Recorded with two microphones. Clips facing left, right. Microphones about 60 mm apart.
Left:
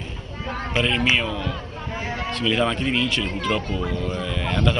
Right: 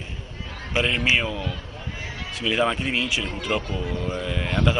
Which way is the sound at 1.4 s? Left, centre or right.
Left.